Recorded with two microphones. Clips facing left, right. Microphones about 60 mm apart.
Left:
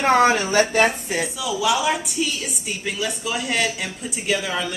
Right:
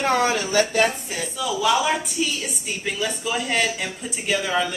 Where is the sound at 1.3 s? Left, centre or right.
Centre.